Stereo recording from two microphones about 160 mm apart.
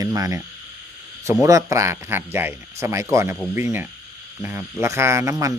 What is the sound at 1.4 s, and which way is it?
Speech, 20° right (ahead or behind).